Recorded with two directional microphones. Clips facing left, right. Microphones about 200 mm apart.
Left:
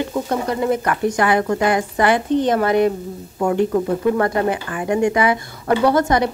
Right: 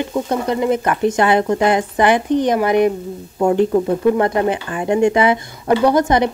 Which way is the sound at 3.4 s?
30° right (ahead or behind).